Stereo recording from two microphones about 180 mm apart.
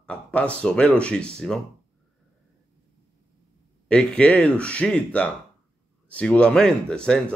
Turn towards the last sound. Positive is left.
turn(degrees=5)  # may be behind; listen again after turning